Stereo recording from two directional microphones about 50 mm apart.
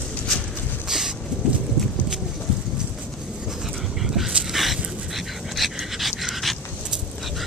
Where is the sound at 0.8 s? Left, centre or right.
Centre.